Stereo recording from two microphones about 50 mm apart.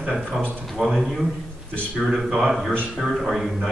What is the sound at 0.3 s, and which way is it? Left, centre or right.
Speech, centre.